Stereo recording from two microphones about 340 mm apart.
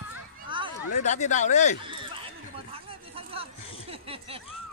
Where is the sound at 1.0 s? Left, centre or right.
Left.